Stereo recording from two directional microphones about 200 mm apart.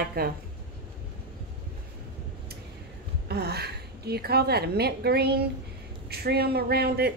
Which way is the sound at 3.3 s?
55° right (ahead or behind).